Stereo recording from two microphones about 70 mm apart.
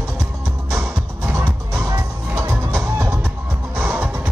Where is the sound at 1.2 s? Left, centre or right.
Right.